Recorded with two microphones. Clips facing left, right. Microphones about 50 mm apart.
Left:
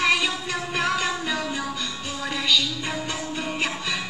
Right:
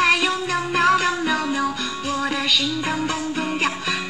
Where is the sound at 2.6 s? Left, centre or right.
Right.